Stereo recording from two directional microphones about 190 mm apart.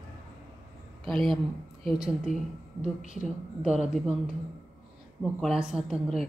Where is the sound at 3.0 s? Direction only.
40° left (ahead or behind).